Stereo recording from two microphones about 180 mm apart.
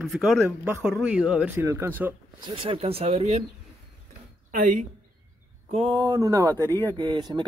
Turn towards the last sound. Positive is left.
turn(degrees=-25)  # may be behind; listen again after turning